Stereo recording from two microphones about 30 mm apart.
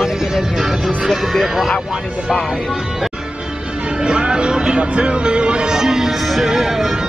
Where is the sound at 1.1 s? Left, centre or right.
Centre.